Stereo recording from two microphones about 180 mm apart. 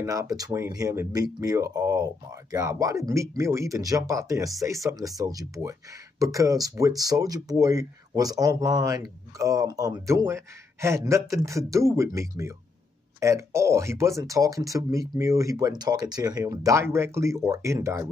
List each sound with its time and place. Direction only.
0.0 s speech: 15° right (ahead or behind)